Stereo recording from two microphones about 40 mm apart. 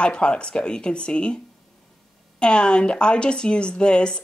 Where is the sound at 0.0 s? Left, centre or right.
Left.